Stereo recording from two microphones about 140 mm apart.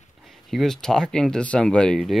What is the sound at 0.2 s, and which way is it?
Speech, centre (ahead or behind).